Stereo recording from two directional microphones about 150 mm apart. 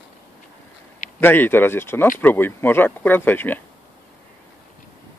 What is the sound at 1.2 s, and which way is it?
Speech, 15° left (ahead or behind).